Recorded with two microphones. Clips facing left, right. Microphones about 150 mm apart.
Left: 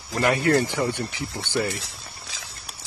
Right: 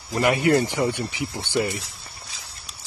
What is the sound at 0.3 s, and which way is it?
Speech, 15° right (ahead or behind).